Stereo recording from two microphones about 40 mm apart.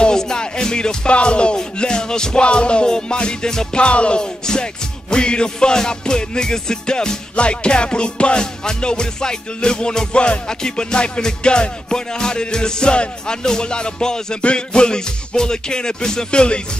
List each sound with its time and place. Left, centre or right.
0.0 s music: centre